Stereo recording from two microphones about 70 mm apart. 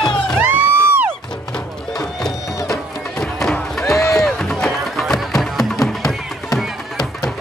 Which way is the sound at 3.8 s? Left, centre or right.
Left.